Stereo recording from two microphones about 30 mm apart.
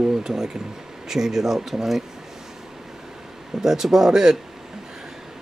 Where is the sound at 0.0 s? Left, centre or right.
Centre.